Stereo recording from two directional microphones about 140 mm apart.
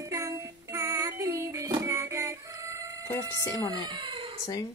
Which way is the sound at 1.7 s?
20° right (ahead or behind).